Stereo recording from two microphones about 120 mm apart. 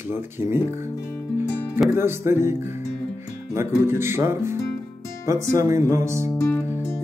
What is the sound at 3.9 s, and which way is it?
Speech, 20° right (ahead or behind).